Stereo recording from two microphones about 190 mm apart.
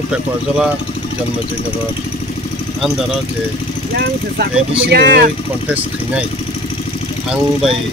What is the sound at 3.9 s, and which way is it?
Speech, 55° right (ahead or behind).